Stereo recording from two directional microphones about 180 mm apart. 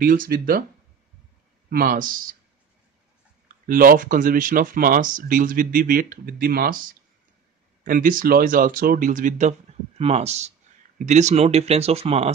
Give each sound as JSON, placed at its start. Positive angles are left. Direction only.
{"t": 0.0, "sound": "speech", "side_deg": -50}
{"t": 1.7, "sound": "speech", "side_deg": -50}
{"t": 3.6, "sound": "speech", "side_deg": -50}